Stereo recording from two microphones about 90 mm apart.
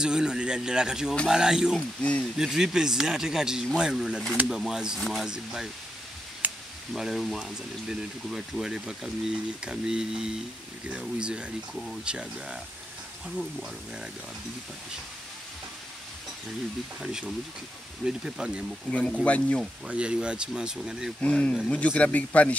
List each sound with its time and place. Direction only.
0.0 s speech: 5° right (ahead or behind)
2.0 s speech: 15° left (ahead or behind)
2.2 s speech: 5° right (ahead or behind)
6.4 s a sound: 20° right (ahead or behind)
6.9 s speech: 5° right (ahead or behind)
17.0 s speech: 5° right (ahead or behind)
18.9 s speech: 10° left (ahead or behind)
19.9 s speech: 10° right (ahead or behind)
21.2 s speech: 10° left (ahead or behind)